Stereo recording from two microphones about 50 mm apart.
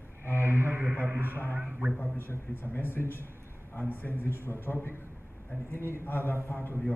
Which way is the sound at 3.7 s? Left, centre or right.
Left.